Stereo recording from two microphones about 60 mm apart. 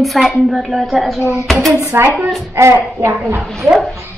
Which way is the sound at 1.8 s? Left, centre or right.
Right.